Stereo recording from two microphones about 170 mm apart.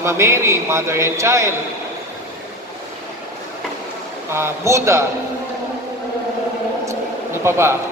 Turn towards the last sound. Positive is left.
turn(degrees=-15)  # may be behind; listen again after turning